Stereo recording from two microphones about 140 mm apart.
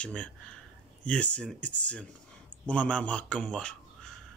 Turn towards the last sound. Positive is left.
turn(degrees=5)  # may be behind; listen again after turning